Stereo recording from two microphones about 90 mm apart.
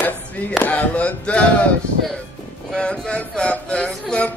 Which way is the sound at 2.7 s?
10° left (ahead or behind).